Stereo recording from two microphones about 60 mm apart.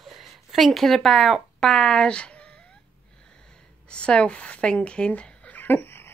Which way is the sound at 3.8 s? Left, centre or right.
Centre.